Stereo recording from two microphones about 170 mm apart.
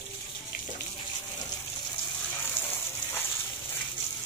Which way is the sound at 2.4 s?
15° left (ahead or behind).